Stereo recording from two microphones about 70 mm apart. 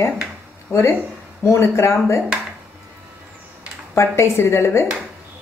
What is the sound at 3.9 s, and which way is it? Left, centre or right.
Speech, left.